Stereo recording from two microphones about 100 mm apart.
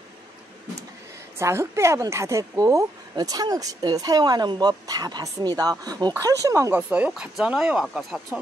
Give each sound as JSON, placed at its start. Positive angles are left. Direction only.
{"t": 1.4, "sound": "speech", "side_deg": -30}
{"t": 6.7, "sound": "speech", "side_deg": -10}